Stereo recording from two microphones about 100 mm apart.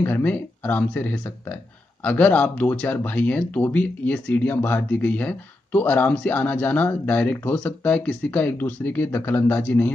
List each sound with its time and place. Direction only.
0.0 s speech: 15° left (ahead or behind)